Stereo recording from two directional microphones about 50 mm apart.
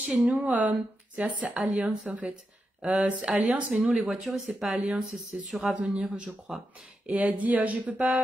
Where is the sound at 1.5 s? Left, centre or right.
Centre.